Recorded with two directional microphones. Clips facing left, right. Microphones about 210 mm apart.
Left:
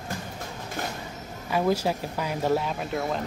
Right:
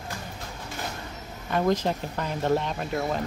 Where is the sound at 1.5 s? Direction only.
5° left (ahead or behind).